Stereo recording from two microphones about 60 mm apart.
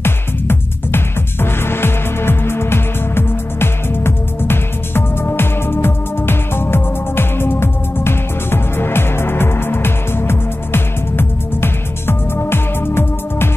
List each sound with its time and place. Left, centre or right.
0.0 s music: left